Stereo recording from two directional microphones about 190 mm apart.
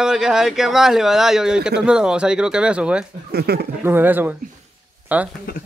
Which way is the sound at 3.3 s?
55° right (ahead or behind).